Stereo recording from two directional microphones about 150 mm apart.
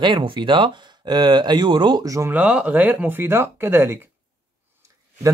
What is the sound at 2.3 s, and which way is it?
Speech, 10° right (ahead or behind).